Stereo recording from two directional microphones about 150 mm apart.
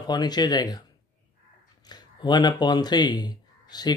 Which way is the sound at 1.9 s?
30° left (ahead or behind).